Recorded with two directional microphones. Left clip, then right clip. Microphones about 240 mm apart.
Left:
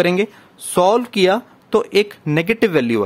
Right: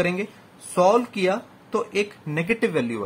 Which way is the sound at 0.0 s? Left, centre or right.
Left.